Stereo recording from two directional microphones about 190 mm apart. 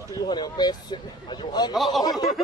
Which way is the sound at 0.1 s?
20° left (ahead or behind).